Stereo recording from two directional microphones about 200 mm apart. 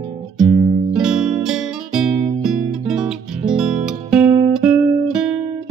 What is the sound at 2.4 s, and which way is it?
Music, 5° right (ahead or behind).